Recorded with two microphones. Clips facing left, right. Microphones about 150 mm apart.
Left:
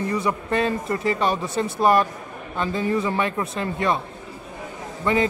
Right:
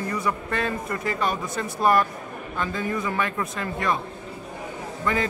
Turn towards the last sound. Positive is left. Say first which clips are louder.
# left 4 dB
turn(degrees=25)  # may be behind; listen again after turning